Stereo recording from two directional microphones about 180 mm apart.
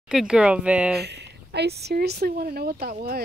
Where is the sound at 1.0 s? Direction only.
70° right (ahead or behind).